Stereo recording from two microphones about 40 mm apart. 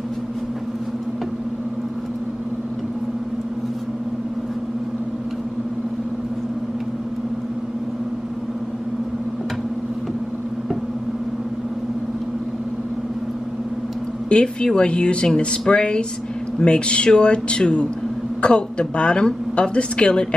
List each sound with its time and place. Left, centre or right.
14.3 s speech: left